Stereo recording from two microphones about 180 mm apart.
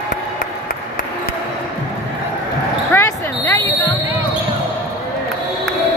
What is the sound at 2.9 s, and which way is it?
Basketball bounce, 15° left (ahead or behind).